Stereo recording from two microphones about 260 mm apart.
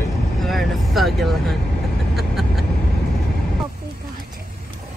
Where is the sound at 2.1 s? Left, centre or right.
Centre.